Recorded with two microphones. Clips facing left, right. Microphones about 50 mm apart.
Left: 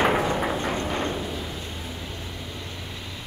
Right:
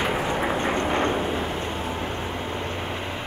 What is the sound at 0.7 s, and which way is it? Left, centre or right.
Vehicle, right.